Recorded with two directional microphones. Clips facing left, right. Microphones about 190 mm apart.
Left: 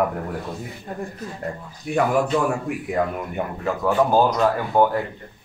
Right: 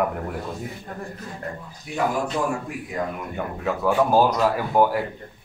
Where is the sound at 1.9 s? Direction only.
50° left (ahead or behind).